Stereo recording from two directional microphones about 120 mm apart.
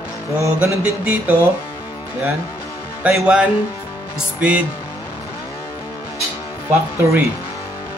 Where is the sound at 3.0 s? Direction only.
5° right (ahead or behind).